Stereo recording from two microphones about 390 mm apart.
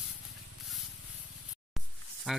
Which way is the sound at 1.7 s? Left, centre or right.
Centre.